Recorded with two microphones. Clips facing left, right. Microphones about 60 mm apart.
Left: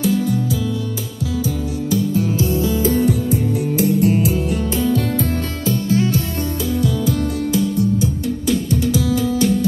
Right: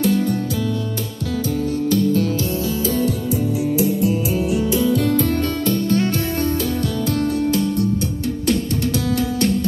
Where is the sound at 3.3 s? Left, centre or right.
Left.